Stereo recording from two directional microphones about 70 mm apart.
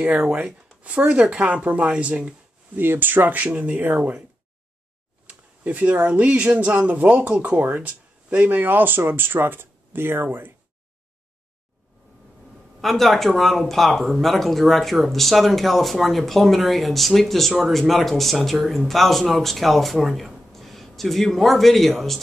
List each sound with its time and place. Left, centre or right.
0.0 s speech: centre
2.8 s speech: right
5.6 s speech: right
12.8 s speech: centre